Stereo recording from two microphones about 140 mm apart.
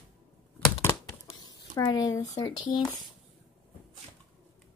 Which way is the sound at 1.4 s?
30° left (ahead or behind).